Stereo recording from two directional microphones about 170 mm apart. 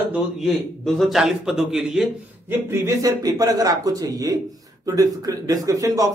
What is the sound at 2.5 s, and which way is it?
A man's voice, 15° right (ahead or behind).